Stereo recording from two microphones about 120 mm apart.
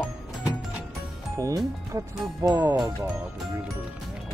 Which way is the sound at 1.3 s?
25° right (ahead or behind).